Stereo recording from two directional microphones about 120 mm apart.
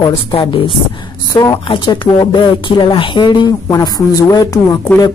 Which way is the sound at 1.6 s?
45° left (ahead or behind).